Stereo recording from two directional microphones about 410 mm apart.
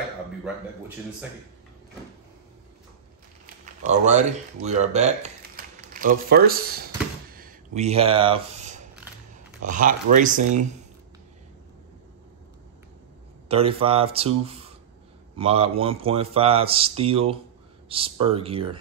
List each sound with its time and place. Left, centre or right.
3.6 s speech: centre
7.3 s a sound: centre
9.6 s speech: centre
13.5 s speech: centre